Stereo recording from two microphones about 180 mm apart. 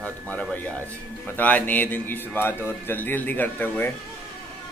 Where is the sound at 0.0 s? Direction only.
10° left (ahead or behind).